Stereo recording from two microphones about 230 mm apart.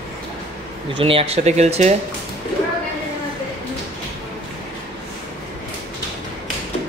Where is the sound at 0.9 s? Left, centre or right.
Right.